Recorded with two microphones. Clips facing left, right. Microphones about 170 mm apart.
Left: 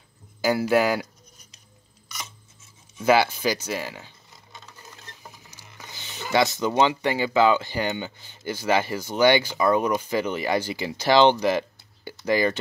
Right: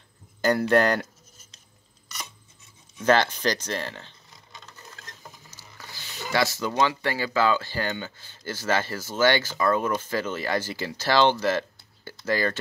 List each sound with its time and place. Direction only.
0.4 s speech: 5° left (ahead or behind)
3.0 s speech: 10° left (ahead or behind)
5.5 s a sound: 15° left (ahead or behind)
6.3 s speech: 20° left (ahead or behind)